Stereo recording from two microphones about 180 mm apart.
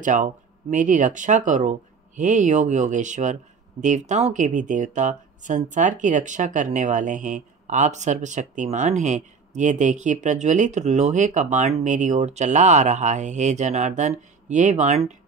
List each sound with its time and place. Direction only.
0.0 s speech: 45° right (ahead or behind)